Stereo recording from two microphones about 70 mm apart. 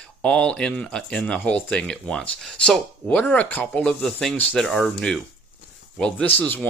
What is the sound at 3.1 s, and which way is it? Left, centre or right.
Speech, left.